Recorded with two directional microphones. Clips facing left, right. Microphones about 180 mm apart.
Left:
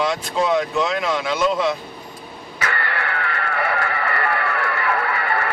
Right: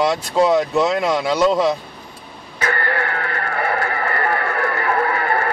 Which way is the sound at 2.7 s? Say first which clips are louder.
Right 4 dB; 45° right (ahead or behind).